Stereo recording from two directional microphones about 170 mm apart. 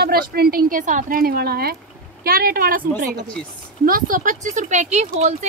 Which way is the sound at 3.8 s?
55° right (ahead or behind).